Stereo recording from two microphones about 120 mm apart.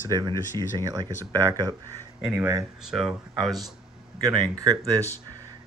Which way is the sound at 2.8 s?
5° right (ahead or behind).